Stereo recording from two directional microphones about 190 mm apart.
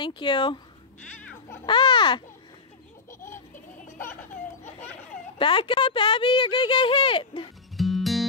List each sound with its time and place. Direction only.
0.0 s speech: 25° left (ahead or behind)
1.7 s speech: 25° left (ahead or behind)
5.4 s speech: 25° left (ahead or behind)
7.7 s music: centre (ahead or behind)